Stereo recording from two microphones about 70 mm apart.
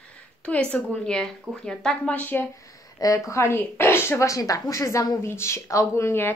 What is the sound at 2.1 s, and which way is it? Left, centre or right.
Speech, left.